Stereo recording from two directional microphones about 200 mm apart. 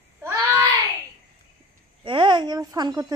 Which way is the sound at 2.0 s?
25° right (ahead or behind).